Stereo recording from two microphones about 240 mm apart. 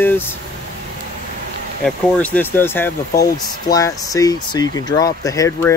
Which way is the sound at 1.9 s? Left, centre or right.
Centre.